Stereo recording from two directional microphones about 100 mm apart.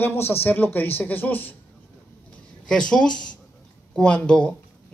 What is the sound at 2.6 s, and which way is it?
Speech, 5° left (ahead or behind).